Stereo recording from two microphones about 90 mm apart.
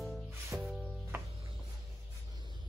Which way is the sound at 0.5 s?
15° right (ahead or behind).